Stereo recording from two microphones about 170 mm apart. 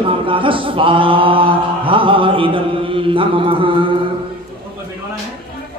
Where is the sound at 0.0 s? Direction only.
30° right (ahead or behind).